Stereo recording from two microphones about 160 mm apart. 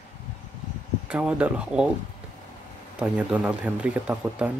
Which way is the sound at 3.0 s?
10° right (ahead or behind).